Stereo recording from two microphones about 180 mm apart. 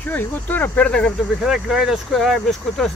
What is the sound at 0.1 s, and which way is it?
Speech, 10° left (ahead or behind).